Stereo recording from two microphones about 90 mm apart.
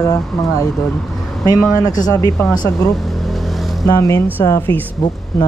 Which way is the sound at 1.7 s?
45° left (ahead or behind).